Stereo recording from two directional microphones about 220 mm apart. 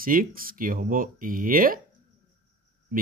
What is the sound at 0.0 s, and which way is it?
A man's voice, 40° right (ahead or behind).